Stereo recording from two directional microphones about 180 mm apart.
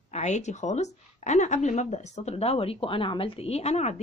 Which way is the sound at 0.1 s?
40° left (ahead or behind).